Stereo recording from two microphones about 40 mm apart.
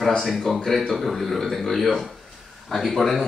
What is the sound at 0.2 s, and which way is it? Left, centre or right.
A man's voice, centre.